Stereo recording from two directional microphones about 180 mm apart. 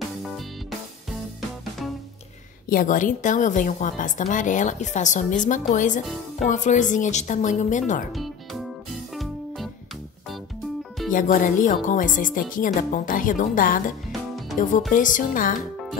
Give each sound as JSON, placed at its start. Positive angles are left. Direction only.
{"t": 2.7, "sound": "a woman's voice", "side_deg": 45}
{"t": 9.1, "sound": "music", "side_deg": 0}
{"t": 11.1, "sound": "a woman's voice", "side_deg": 45}